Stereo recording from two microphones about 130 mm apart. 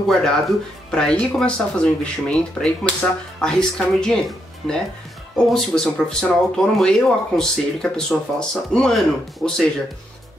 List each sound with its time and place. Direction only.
0.1 s speech: 5° left (ahead or behind)